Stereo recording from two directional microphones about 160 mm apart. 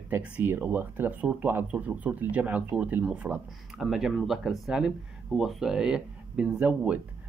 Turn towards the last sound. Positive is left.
turn(degrees=-10)  # may be behind; listen again after turning